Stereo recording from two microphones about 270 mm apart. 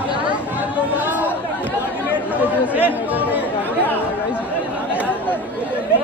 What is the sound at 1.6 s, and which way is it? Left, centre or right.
Chatter, centre.